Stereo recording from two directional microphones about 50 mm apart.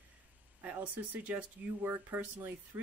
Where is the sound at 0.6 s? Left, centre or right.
Right.